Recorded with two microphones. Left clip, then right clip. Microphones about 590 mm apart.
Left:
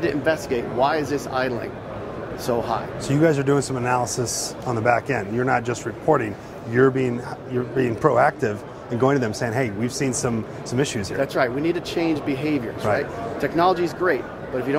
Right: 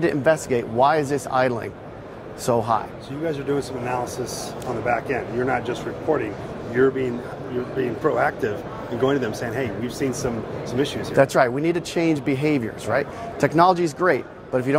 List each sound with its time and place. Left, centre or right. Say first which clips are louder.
0.0 s speech: right 2 dB; right
3.3 s speech: left 3 dB; left
11.1 s speech: right 5 dB; right